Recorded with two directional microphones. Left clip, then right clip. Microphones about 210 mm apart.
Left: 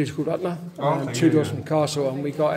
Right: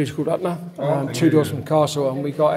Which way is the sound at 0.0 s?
10° right (ahead or behind).